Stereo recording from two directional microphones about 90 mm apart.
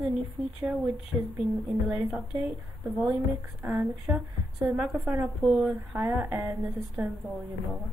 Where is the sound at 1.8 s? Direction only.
40° right (ahead or behind).